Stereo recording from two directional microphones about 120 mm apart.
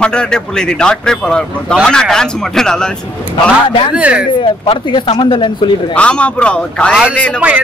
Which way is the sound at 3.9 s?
10° right (ahead or behind).